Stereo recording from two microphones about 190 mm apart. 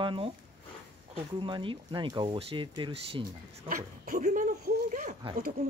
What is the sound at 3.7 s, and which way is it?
Speech, 45° right (ahead or behind).